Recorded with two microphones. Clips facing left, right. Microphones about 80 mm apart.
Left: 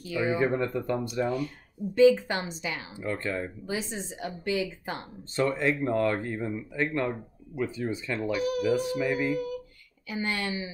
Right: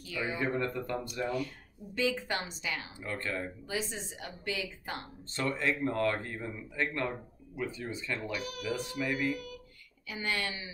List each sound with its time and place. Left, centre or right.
0.0 s speech: left
3.2 s a woman's voice: centre
3.6 s a woman's voice: left